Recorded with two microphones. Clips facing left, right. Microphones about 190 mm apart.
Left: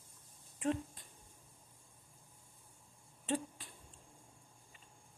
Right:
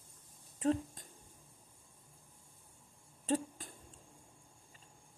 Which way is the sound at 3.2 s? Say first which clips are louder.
Right 3 dB; 45° right (ahead or behind).